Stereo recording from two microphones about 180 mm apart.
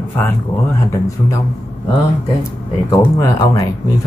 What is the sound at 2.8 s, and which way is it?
Speech, 15° left (ahead or behind).